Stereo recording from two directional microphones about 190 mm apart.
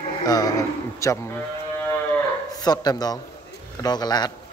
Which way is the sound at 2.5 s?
20° left (ahead or behind).